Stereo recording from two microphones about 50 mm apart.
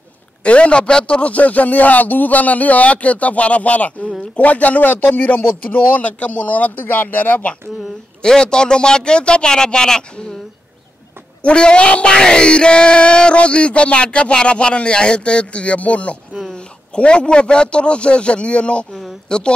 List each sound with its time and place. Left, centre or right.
0.4 s speech: left
8.2 s a man's voice: centre
11.4 s a man's voice: centre